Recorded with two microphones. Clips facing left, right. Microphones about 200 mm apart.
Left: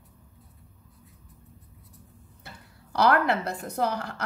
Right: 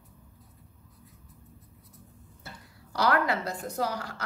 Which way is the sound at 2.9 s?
60° left (ahead or behind).